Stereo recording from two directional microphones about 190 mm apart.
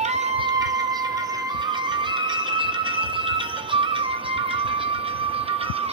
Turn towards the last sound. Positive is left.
turn(degrees=-30)  # may be behind; listen again after turning